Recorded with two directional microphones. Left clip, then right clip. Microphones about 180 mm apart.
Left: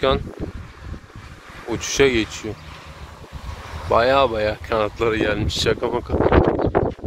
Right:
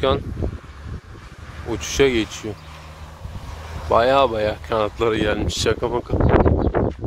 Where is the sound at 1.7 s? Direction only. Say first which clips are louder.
Left 1 dB; centre (ahead or behind).